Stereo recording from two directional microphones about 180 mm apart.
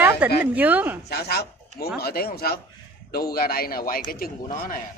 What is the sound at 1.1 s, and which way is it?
A man's voice, 60° left (ahead or behind).